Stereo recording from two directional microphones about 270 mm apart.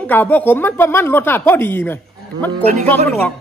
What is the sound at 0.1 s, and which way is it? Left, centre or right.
A man's voice, centre.